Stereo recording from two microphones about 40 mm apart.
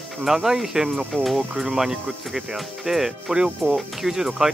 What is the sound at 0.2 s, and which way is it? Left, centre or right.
Speech, centre.